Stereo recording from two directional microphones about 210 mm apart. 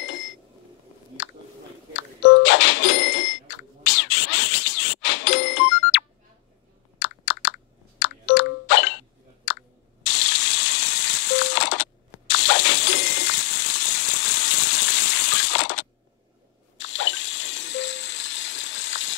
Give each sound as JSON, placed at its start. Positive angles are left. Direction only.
{"t": 1.2, "sound": "a sound", "side_deg": 65}
{"t": 2.0, "sound": "cash register", "side_deg": 60}
{"t": 3.8, "sound": "bicycle bell", "side_deg": 65}
{"t": 7.0, "sound": "chewing", "side_deg": 65}
{"t": 8.0, "sound": "a sound", "side_deg": 60}
{"t": 16.7, "sound": "water", "side_deg": 65}